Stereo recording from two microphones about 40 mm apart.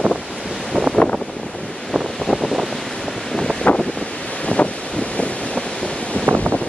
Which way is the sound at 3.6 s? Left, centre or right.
Left.